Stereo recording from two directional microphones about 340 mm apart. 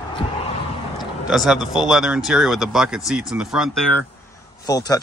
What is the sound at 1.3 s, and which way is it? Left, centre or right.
Speech, centre.